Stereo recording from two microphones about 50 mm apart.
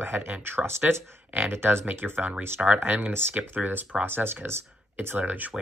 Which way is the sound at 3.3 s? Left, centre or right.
Right.